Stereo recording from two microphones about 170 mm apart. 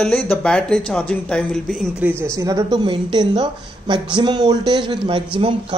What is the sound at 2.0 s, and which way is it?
Speech, 10° right (ahead or behind).